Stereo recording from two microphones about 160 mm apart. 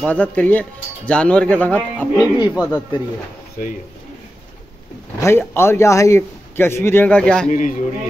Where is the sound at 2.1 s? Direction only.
25° left (ahead or behind).